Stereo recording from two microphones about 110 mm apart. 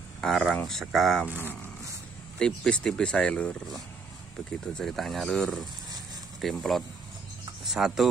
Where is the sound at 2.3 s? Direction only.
10° left (ahead or behind).